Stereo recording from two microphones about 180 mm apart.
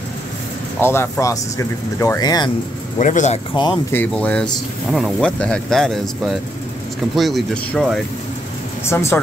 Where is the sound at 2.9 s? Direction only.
40° left (ahead or behind).